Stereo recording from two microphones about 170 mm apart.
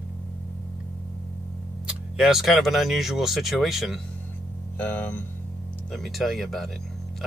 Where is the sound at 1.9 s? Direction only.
5° right (ahead or behind).